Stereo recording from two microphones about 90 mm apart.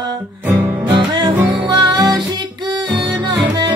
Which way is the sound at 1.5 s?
55° right (ahead or behind).